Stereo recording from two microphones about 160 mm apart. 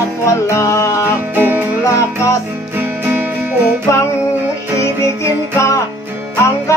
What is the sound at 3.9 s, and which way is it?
Music, 15° left (ahead or behind).